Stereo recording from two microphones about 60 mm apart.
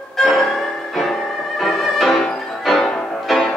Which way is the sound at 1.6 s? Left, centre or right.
Centre.